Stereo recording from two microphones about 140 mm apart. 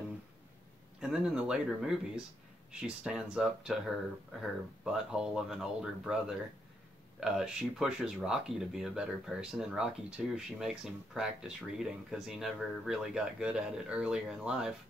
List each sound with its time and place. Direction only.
1.0 s speech: 5° right (ahead or behind)